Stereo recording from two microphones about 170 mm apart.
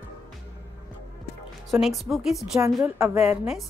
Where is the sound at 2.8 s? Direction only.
15° right (ahead or behind).